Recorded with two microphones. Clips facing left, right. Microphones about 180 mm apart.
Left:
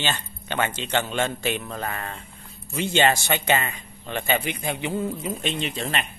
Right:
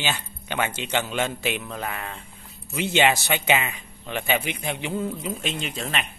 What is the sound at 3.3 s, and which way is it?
A man's voice, 10° right (ahead or behind).